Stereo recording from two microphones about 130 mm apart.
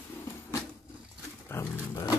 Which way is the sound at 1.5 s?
20° left (ahead or behind).